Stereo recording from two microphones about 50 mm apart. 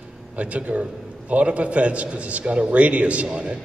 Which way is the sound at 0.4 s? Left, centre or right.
Right.